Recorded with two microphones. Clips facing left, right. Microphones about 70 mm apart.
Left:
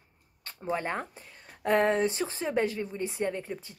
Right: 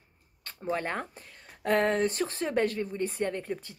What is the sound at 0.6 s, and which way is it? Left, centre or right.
Speech, centre.